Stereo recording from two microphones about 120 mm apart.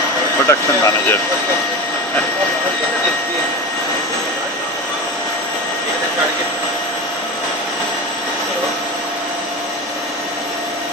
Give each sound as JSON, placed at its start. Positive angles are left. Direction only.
{"t": 0.5, "sound": "speech", "side_deg": 25}